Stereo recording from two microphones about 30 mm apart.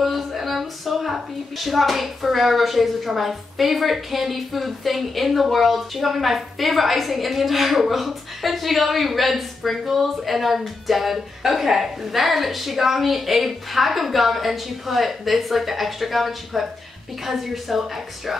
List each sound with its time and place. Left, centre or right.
0.0 s a woman's voice: centre